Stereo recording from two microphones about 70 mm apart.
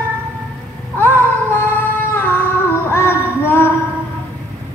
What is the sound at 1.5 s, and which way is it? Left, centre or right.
Female singing, left.